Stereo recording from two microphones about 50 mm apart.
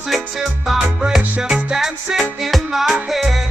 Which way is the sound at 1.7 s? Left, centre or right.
Centre.